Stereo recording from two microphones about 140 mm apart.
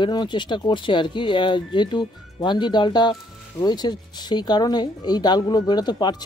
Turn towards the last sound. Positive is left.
turn(degrees=30)  # may be behind; listen again after turning